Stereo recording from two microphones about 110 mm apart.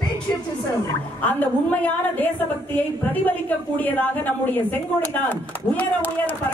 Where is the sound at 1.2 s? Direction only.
15° left (ahead or behind).